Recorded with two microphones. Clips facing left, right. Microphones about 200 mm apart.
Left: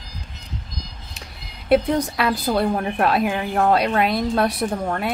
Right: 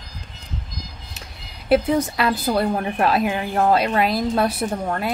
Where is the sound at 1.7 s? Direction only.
Centre (ahead or behind).